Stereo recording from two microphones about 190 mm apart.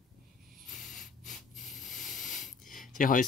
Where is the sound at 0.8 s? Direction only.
40° left (ahead or behind).